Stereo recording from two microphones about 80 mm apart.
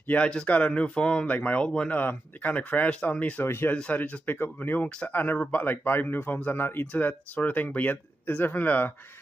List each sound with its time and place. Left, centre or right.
0.0 s speech: centre
3.4 s speech: left
3.7 s speech: centre